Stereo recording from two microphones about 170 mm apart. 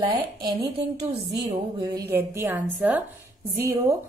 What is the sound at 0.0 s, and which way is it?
Speech, 25° right (ahead or behind).